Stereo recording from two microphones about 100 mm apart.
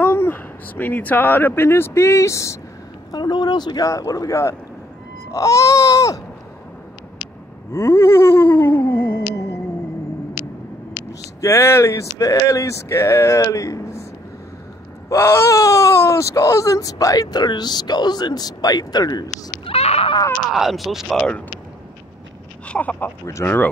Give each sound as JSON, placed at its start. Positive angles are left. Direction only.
{"t": 0.0, "sound": "speech", "side_deg": 20}
{"t": 3.1, "sound": "speech", "side_deg": 45}
{"t": 7.7, "sound": "a sound", "side_deg": 25}
{"t": 11.4, "sound": "a sound", "side_deg": 25}
{"t": 13.5, "sound": "speech", "side_deg": 30}
{"t": 15.0, "sound": "speech", "side_deg": 25}
{"t": 19.6, "sound": "speech", "side_deg": 85}
{"t": 20.4, "sound": "speech", "side_deg": 0}
{"t": 22.7, "sound": "speech", "side_deg": 15}
{"t": 23.4, "sound": "a sound", "side_deg": 20}